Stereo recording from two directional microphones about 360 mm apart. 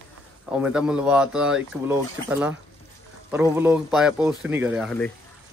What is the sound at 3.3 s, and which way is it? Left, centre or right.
Speech, centre.